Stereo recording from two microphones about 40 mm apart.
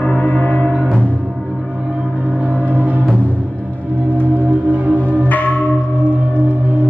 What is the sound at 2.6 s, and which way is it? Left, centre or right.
Music, right.